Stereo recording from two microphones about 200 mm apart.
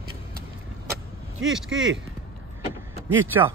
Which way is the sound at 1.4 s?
Centre (ahead or behind).